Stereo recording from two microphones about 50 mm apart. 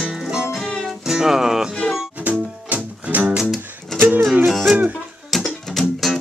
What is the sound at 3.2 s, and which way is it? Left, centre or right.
Music, right.